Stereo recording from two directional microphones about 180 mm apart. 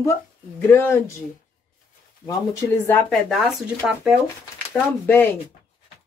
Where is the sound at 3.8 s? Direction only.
Centre (ahead or behind).